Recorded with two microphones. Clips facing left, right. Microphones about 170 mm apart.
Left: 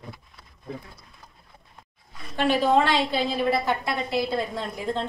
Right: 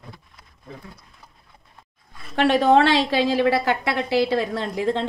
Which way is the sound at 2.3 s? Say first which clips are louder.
Right 4 dB; 75° right (ahead or behind).